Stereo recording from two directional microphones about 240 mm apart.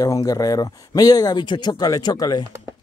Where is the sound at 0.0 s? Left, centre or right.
Centre.